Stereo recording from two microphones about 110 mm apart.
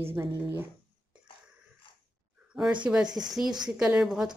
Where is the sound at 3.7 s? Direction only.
10° right (ahead or behind).